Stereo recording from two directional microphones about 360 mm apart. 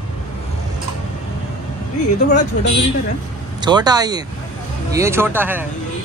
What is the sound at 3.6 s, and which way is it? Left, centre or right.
Speech, centre.